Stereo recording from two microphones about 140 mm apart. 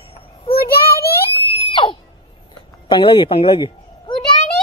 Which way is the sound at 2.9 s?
35° left (ahead or behind).